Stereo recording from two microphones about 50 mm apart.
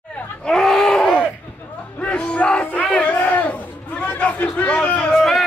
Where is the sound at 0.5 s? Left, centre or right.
Centre.